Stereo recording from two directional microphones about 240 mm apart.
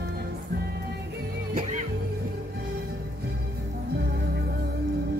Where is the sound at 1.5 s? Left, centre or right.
Right.